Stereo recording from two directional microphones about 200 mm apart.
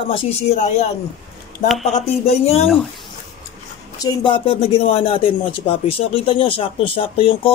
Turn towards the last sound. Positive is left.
turn(degrees=25)  # may be behind; listen again after turning